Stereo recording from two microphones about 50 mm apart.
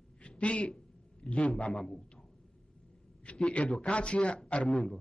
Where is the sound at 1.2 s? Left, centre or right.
Left.